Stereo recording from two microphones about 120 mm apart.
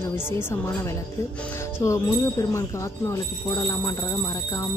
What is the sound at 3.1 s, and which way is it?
Speech, 30° left (ahead or behind).